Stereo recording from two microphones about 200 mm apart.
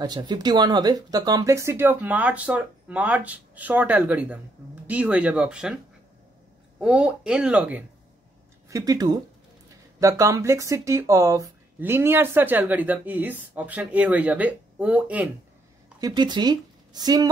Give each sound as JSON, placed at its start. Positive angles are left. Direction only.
{"t": 0.0, "sound": "speech", "side_deg": -20}
{"t": 6.8, "sound": "speech", "side_deg": -5}
{"t": 16.0, "sound": "speech", "side_deg": -20}